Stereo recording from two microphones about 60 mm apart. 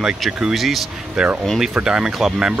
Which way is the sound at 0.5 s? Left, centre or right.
Centre.